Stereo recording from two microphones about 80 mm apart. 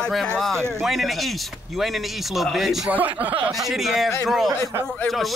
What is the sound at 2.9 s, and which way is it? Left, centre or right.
Speech, right.